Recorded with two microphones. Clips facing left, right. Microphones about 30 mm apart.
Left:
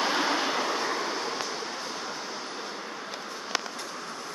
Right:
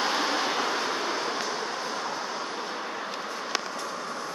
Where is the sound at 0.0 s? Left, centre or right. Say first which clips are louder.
Even; centre.